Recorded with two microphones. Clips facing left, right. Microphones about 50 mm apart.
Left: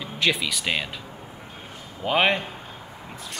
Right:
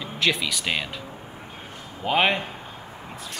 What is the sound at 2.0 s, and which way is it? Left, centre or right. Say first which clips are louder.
Speech: even; centre.